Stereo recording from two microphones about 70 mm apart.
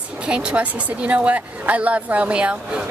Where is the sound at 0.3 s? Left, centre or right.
Centre.